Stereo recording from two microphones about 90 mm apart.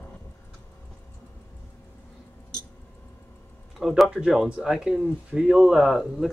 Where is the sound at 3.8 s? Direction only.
5° right (ahead or behind).